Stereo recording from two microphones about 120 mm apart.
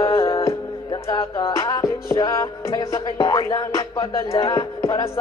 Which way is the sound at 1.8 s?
25° left (ahead or behind).